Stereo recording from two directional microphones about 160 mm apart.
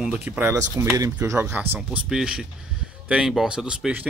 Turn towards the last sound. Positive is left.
turn(degrees=-5)  # may be behind; listen again after turning